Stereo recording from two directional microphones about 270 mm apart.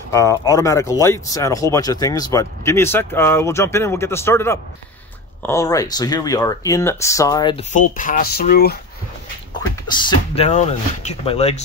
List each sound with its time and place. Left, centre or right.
0.1 s speech: centre
7.7 s speech: left
9.8 s speech: centre